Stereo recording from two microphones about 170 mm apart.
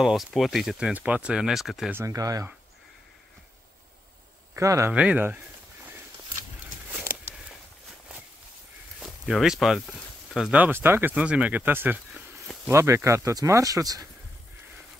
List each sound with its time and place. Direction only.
0.0 s speech: centre (ahead or behind)
2.0 s speech: 20° right (ahead or behind)
4.6 s speech: 15° right (ahead or behind)
6.9 s a sound: 10° right (ahead or behind)
9.0 s speech: centre (ahead or behind); by 14.0 s 20° right (ahead or behind)